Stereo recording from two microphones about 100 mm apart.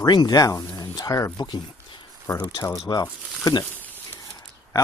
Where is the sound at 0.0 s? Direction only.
45° left (ahead or behind).